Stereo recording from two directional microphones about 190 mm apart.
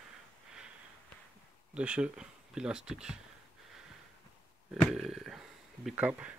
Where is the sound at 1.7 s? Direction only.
5° right (ahead or behind).